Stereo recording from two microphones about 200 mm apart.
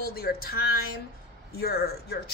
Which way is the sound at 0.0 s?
50° left (ahead or behind).